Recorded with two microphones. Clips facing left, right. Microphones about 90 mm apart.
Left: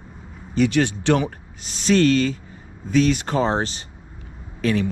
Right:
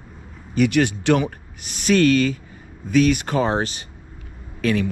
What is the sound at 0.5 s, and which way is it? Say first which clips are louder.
A man's voice: right 1 dB; 25° left (ahead or behind).